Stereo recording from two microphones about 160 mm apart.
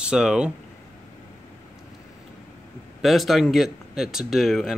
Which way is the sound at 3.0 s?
Centre (ahead or behind).